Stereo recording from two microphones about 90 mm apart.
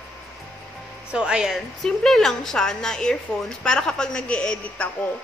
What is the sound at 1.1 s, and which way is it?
Speech, 10° right (ahead or behind).